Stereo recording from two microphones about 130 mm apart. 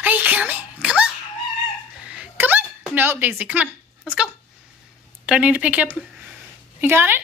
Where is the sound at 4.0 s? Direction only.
5° right (ahead or behind).